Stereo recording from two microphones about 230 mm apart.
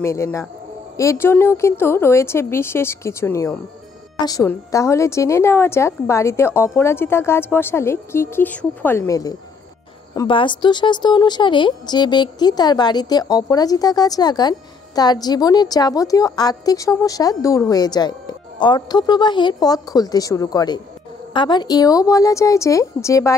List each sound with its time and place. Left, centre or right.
0.0 s a woman's voice: centre